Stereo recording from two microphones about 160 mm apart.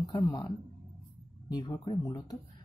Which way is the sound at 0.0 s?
25° left (ahead or behind).